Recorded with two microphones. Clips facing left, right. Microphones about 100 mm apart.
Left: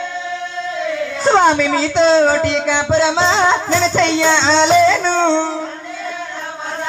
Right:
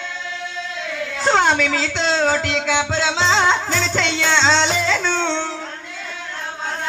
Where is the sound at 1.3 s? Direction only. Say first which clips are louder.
Left 5 dB; 15° left (ahead or behind).